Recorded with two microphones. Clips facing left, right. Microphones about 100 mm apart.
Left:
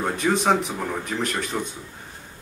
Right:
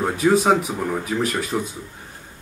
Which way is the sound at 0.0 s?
5° right (ahead or behind).